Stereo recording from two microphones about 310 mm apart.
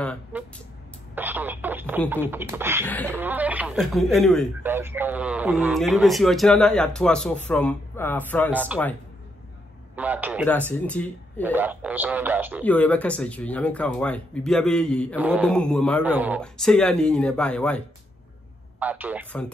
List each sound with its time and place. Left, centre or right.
0.0 s speech: centre
2.8 s speech: centre
3.1 s speech: centre
9.9 s speech: centre
10.4 s speech: centre
11.4 s speech: centre
12.6 s speech: centre